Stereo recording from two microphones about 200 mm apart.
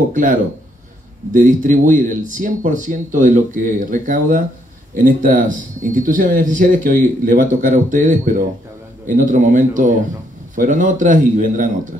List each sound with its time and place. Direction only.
0.1 s speech: 40° right (ahead or behind)